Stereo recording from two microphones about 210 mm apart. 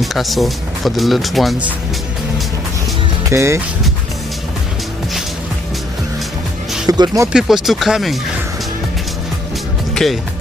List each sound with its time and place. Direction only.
0.0 s speech: centre (ahead or behind)
3.3 s speech: 15° right (ahead or behind)
6.9 s speech: 15° right (ahead or behind)
7.3 s speech: centre (ahead or behind)
10.0 s speech: 5° left (ahead or behind)